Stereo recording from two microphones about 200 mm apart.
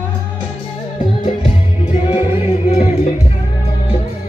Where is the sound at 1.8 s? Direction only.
30° left (ahead or behind).